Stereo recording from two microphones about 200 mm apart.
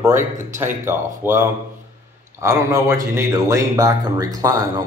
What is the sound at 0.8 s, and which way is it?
Speech, 15° right (ahead or behind).